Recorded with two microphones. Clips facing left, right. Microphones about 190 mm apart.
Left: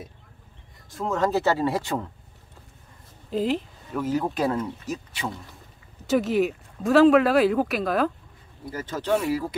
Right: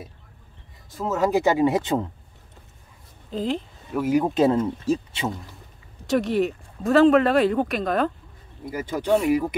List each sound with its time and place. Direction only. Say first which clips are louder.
0.8 s speech: right 2 dB; centre (ahead or behind); by 2.0 s 20° right (ahead or behind)
3.3 s a sound: left 2 dB; 5° left (ahead or behind)
4.0 s speech: right 5 dB; 15° right (ahead or behind)
6.0 s speech: even; centre (ahead or behind)
8.6 s speech: right 3 dB; 15° right (ahead or behind)